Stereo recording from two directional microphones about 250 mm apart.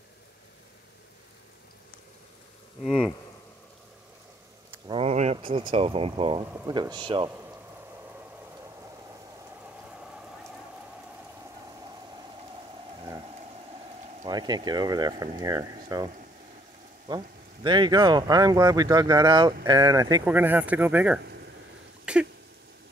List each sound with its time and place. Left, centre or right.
2.8 s speech: centre
4.8 s a sound: right
5.7 s speech: right
14.2 s speech: centre
17.1 s speech: centre
22.0 s a sound: centre